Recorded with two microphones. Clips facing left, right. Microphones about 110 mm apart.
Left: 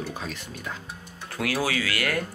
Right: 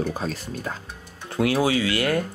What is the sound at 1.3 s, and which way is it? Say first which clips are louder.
Speech: right 6 dB; 25° right (ahead or behind).